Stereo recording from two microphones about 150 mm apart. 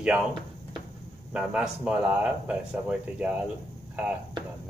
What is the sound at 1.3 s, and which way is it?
Speech, 5° right (ahead or behind).